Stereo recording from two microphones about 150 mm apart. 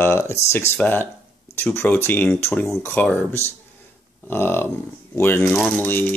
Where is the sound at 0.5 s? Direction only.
15° left (ahead or behind).